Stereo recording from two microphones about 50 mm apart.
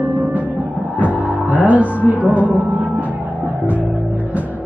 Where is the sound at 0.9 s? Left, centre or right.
Right.